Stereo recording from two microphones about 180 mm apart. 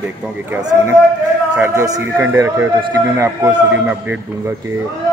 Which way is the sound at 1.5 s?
15° right (ahead or behind).